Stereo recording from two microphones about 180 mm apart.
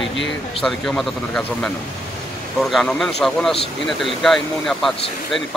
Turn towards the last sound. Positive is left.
turn(degrees=0)  # may be behind; listen again after turning